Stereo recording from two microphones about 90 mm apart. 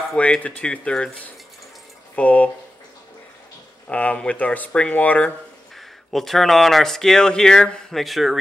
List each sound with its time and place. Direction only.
0.2 s speech: 15° left (ahead or behind)
3.9 s speech: 15° left (ahead or behind)
5.8 s speech: centre (ahead or behind)